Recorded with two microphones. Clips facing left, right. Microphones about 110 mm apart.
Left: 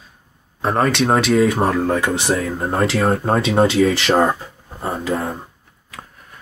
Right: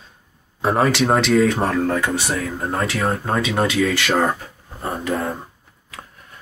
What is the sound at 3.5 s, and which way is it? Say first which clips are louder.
Speech: left 5 dB; 30° left (ahead or behind).